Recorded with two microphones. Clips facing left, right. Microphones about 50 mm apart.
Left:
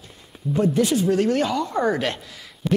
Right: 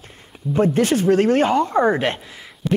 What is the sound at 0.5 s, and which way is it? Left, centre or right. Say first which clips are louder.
A man's voice: right 3 dB; right.